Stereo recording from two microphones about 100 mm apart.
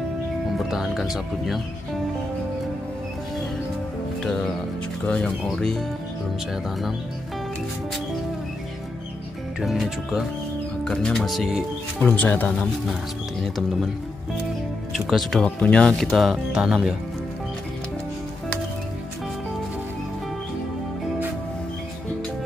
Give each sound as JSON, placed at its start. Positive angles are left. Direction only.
{"t": 0.6, "sound": "speech", "side_deg": 0}
{"t": 5.0, "sound": "speech", "side_deg": 10}
{"t": 9.6, "sound": "speech", "side_deg": -5}
{"t": 10.8, "sound": "speech", "side_deg": 10}
{"t": 12.0, "sound": "speech", "side_deg": 20}
{"t": 14.9, "sound": "speech", "side_deg": 0}
{"t": 16.0, "sound": "speech", "side_deg": 0}